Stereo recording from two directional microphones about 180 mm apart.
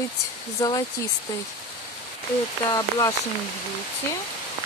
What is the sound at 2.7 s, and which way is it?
Speech, 20° left (ahead or behind).